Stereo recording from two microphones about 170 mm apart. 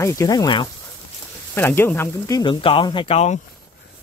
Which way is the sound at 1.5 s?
15° left (ahead or behind).